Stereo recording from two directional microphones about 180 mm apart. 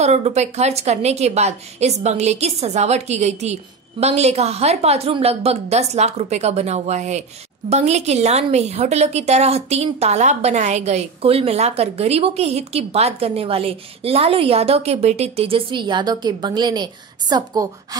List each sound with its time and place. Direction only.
0.0 s a woman's voice: 35° right (ahead or behind); by 17.6 s 20° right (ahead or behind)